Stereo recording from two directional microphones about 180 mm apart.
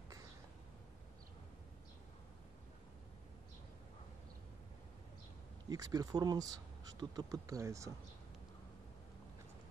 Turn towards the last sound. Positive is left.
turn(degrees=-15)  # may be behind; listen again after turning